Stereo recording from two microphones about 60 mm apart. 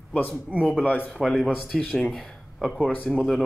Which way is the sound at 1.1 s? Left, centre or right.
Centre.